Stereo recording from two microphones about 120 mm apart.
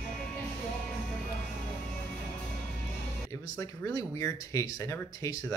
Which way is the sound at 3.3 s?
25° left (ahead or behind).